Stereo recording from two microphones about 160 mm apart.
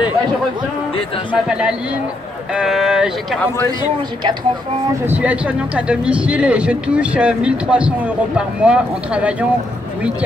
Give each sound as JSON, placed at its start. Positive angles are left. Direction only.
{"t": 1.3, "sound": "speech", "side_deg": -5}
{"t": 5.0, "sound": "speech", "side_deg": -10}